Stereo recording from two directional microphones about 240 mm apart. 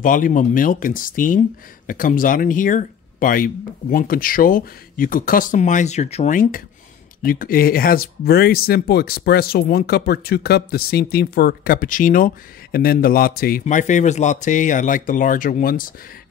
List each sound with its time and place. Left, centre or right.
0.0 s speech: left